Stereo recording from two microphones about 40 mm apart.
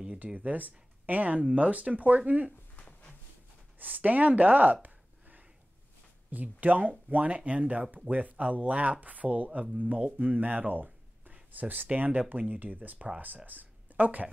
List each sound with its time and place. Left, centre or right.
0.3 s speech: right
2.8 s a sound: left
3.8 s speech: right
6.3 s speech: right